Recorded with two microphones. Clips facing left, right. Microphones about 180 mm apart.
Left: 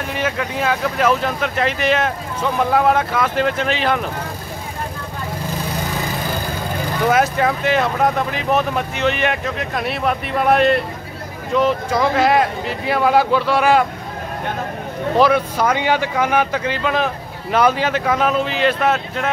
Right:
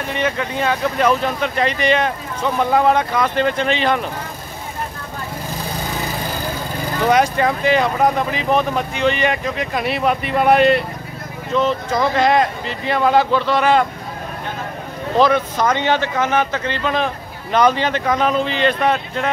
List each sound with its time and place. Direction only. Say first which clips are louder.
0.1 s speech: right 2 dB; 5° left (ahead or behind)
7.1 s speech: right 1 dB; centre (ahead or behind)
11.5 s speech: left 1 dB; 10° left (ahead or behind)
15.1 s speech: even; 10° left (ahead or behind)